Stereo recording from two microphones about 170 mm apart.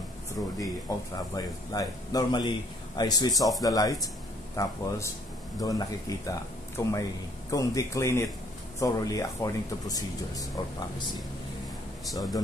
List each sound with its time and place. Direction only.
0.6 s speech: 20° left (ahead or behind)